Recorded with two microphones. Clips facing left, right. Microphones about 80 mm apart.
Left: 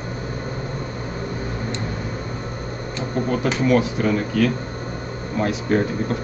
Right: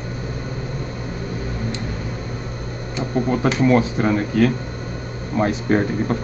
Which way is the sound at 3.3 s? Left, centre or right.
Right.